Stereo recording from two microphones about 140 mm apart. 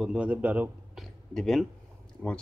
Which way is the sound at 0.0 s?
5° right (ahead or behind).